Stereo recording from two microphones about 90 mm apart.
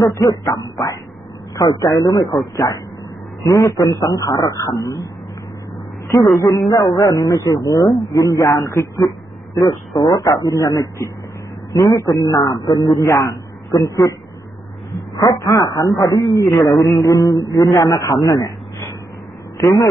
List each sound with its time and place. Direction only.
0.0 s a man's voice: 40° left (ahead or behind)
6.7 s a man's voice: 40° left (ahead or behind)
15.1 s speech: 45° left (ahead or behind)
16.3 s speech: centre (ahead or behind)
17.0 s a man's voice: 40° left (ahead or behind)